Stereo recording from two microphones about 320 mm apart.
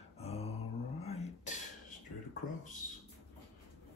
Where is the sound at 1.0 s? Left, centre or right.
Centre.